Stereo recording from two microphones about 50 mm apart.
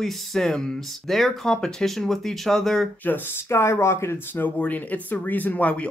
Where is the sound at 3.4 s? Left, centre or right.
Left.